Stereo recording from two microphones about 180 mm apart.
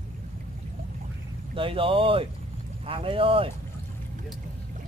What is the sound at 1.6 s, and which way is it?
Speech, 30° right (ahead or behind).